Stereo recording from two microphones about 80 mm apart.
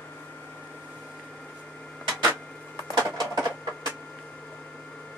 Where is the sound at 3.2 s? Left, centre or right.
Right.